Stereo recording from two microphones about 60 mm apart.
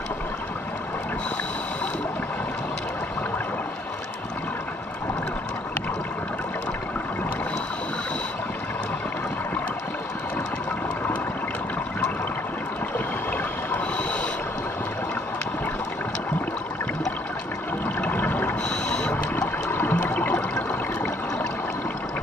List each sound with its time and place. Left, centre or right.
12.9 s boat: left
18.0 s water: left
18.7 s a sound: centre
19.3 s water: left